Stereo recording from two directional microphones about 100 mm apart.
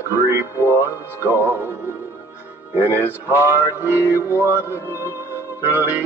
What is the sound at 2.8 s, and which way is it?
Music, 25° right (ahead or behind).